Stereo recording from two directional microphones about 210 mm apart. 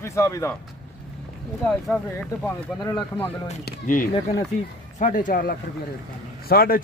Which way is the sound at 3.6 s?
40° left (ahead or behind).